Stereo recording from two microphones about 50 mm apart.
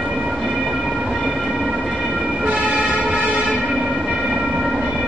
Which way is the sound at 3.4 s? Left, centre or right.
Centre.